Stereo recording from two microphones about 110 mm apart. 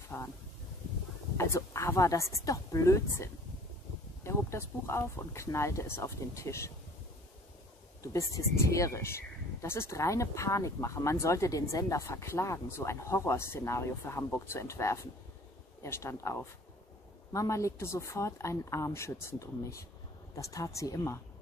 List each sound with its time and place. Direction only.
0.1 s speech: 20° left (ahead or behind)
1.3 s speech: 25° left (ahead or behind)
8.0 s speech: 30° left (ahead or behind)